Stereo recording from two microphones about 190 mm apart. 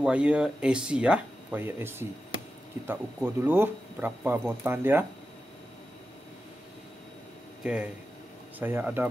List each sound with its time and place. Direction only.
0.0 s speech: 5° right (ahead or behind)
7.6 s speech: 5° right (ahead or behind)